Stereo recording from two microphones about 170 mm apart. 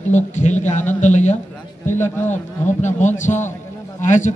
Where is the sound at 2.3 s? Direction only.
45° left (ahead or behind).